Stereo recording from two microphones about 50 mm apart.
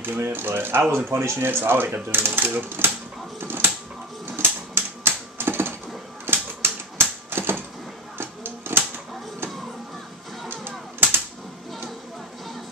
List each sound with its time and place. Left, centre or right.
0.0 s speech: right
1.1 s speech: right
3.3 s a sound: right
4.3 s typewriter: right
8.2 s a sound: right
10.5 s music: right